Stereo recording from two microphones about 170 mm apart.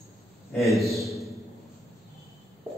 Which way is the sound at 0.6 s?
Centre (ahead or behind).